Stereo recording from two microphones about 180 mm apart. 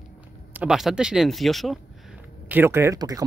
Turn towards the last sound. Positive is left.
turn(degrees=-20)  # may be behind; listen again after turning